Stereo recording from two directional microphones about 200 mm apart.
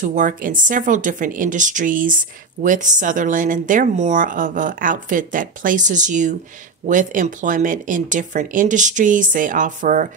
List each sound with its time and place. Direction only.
0.0 s speech: 40° right (ahead or behind)